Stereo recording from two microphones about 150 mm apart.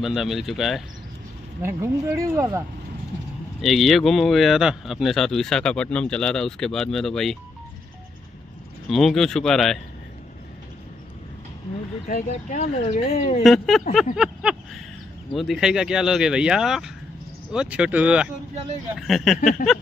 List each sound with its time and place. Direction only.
0.0 s speech: centre (ahead or behind)
1.6 s speech: 15° right (ahead or behind)
3.6 s speech: centre (ahead or behind)
8.8 s speech: centre (ahead or behind)
12.3 s speech: 50° left (ahead or behind)
13.4 s speech: centre (ahead or behind)
14.1 s a sound: 5° right (ahead or behind)
15.3 s speech: centre (ahead or behind)